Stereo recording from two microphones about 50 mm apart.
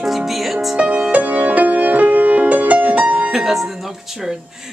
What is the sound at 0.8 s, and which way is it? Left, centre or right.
Music, right.